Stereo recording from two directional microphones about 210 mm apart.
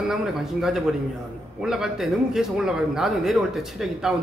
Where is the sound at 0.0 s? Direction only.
Centre (ahead or behind).